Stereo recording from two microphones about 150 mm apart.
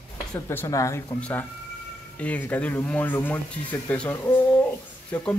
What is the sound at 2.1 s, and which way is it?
Speech, 10° left (ahead or behind).